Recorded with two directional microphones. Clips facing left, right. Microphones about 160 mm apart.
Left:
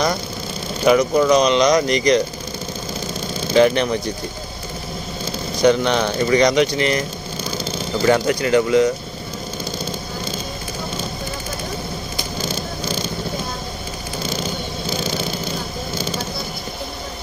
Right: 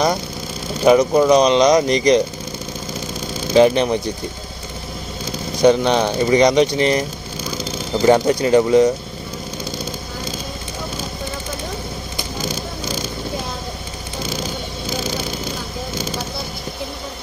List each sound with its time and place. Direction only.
0.8 s speech: 30° right (ahead or behind)
3.5 s speech: 20° right (ahead or behind)
5.6 s speech: 20° right (ahead or behind)
7.5 s a sound: 20° right (ahead or behind)
8.3 s speech: 25° right (ahead or behind)